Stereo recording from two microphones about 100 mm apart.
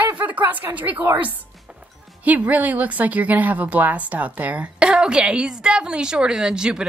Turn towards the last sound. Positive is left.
turn(degrees=-10)  # may be behind; listen again after turning